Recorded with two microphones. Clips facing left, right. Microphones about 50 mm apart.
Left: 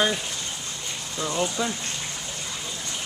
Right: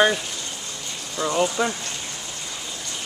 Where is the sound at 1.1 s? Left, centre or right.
Right.